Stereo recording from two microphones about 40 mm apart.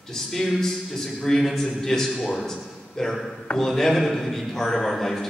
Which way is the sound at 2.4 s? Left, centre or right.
Centre.